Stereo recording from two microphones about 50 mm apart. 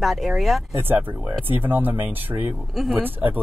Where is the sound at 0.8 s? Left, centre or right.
Right.